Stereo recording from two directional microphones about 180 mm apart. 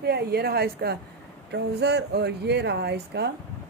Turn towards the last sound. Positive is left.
turn(degrees=-65)  # may be behind; listen again after turning